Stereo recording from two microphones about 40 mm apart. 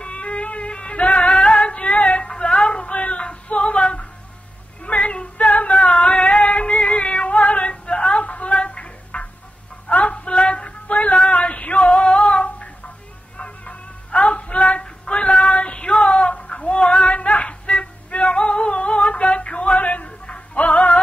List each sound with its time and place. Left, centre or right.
0.0 s music: left
1.4 s singing: left
1.8 s female singing: left
2.2 s a sound: left
4.8 s female singing: left
6.2 s female singing: left
8.2 s music: left
9.8 s a sound: left
11.2 s female singing: left
13.4 s music: left